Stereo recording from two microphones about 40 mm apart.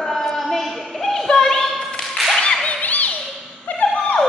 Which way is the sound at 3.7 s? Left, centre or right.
Left.